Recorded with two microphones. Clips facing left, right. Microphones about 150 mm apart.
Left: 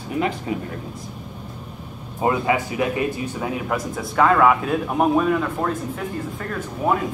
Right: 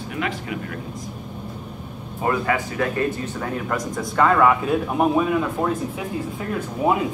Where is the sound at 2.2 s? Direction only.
20° left (ahead or behind).